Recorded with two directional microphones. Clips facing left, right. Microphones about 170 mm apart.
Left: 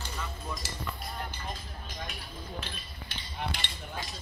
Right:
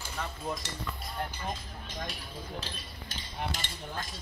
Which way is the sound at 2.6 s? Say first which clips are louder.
Even; 40° right (ahead or behind).